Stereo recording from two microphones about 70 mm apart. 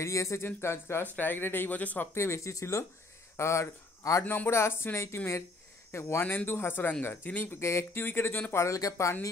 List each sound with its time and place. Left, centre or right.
0.0 s speech: left
1.1 s speech: left
2.1 s speech: left
4.2 s speech: left
4.5 s speech: left
7.6 s speech: left
8.6 s speech: left